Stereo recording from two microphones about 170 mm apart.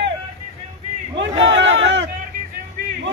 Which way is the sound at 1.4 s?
90° right.